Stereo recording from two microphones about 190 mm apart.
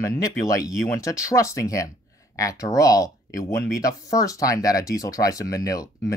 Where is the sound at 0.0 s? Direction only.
15° left (ahead or behind).